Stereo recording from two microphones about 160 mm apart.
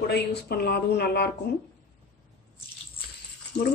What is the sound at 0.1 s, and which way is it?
Speech, 85° left.